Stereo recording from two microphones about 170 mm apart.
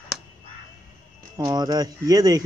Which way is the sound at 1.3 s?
20° right (ahead or behind).